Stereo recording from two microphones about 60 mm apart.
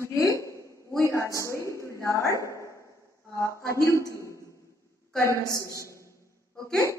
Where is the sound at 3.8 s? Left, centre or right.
Left.